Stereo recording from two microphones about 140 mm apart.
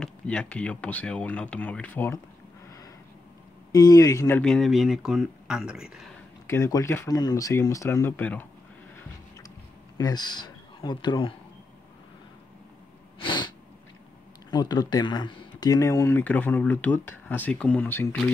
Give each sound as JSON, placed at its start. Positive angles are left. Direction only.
{"t": 0.0, "sound": "speech", "side_deg": 5}
{"t": 3.7, "sound": "speech", "side_deg": 25}
{"t": 4.4, "sound": "speech", "side_deg": 5}
{"t": 6.4, "sound": "speech", "side_deg": 20}
{"t": 9.9, "sound": "speech", "side_deg": 30}
{"t": 13.2, "sound": "sneeze", "side_deg": 35}
{"t": 14.5, "sound": "speech", "side_deg": 30}